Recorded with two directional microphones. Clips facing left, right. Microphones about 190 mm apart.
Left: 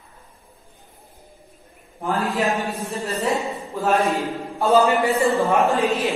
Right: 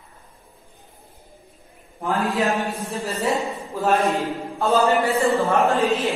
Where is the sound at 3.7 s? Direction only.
Centre (ahead or behind).